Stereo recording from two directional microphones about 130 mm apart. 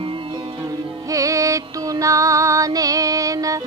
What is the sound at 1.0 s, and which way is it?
Music, 25° right (ahead or behind).